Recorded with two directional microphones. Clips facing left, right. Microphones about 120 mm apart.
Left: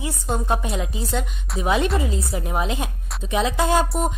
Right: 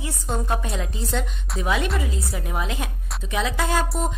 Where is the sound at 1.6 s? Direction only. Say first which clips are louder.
Left 4 dB; 25° left (ahead or behind).